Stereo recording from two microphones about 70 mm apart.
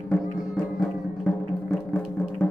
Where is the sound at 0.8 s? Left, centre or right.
Centre.